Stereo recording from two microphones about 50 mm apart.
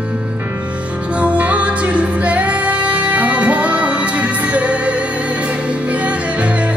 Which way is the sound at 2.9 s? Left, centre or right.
Right.